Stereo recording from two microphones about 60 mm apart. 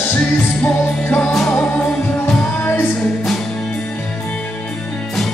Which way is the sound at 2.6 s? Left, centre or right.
Left.